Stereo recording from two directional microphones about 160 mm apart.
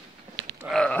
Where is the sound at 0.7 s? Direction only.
5° left (ahead or behind).